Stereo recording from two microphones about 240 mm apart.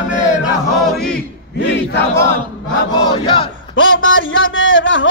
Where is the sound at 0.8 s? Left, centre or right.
Centre.